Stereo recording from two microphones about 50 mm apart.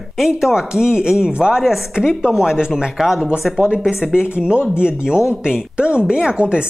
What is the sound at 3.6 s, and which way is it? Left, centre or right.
Speech, centre.